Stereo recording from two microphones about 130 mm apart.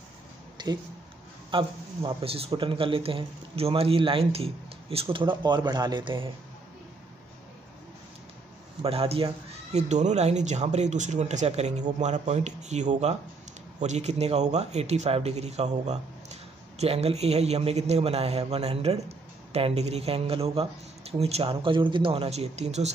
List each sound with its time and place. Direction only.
0.6 s a man's voice: 35° right (ahead or behind)
8.8 s speech: 50° right (ahead or behind)